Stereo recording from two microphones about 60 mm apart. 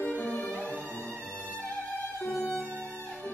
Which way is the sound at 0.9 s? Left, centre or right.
Left.